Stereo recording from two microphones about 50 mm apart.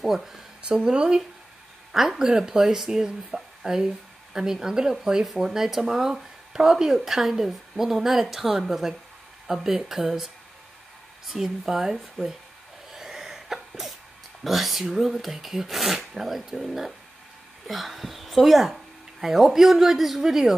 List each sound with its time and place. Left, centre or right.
0.0 s speech: centre
0.6 s speech: centre
12.9 s sneeze: centre
14.4 s speech: centre